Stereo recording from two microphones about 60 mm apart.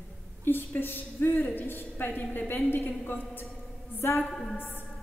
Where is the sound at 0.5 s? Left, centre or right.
Left.